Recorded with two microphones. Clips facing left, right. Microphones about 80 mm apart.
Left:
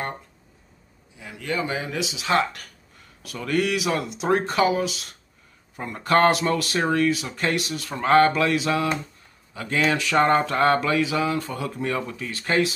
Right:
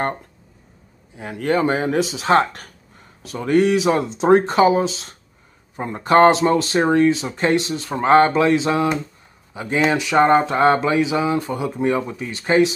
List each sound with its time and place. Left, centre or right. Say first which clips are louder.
1.1 s speech: right 8 dB; right